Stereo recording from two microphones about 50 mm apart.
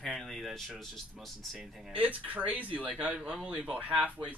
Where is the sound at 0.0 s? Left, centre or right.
Centre.